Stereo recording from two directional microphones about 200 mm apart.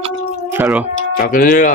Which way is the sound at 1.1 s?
45° left (ahead or behind).